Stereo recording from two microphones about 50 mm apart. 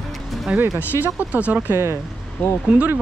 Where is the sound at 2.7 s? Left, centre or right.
Centre.